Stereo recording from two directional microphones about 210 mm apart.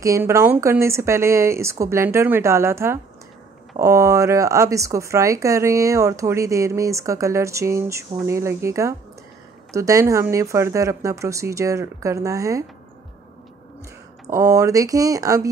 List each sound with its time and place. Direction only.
0.0 s speech: 15° right (ahead or behind)
14.3 s speech: 15° right (ahead or behind)